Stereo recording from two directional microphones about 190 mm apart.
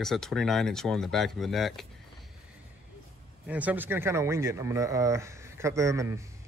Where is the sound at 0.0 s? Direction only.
Centre (ahead or behind).